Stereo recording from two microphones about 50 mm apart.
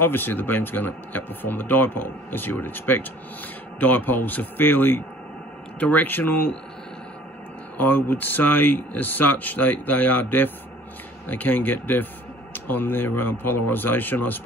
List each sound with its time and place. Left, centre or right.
0.0 s speech: left
7.7 s speech: left